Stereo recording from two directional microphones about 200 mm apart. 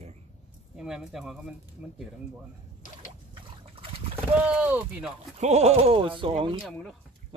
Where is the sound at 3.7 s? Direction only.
25° right (ahead or behind).